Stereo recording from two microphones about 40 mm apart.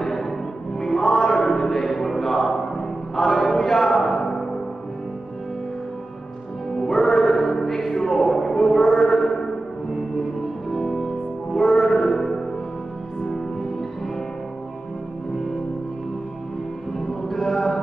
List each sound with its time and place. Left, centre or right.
0.0 s music: centre
0.7 s mantra: centre
6.8 s music: left
7.3 s music: centre
8.3 s chant: centre
9.2 s a sound: centre
10.8 s music: centre
17.3 s a sound: centre